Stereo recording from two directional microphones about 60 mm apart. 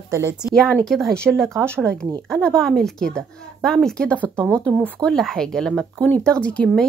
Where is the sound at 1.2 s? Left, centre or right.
Centre.